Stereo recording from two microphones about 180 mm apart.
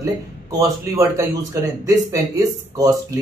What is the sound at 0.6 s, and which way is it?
A man's voice, 15° right (ahead or behind).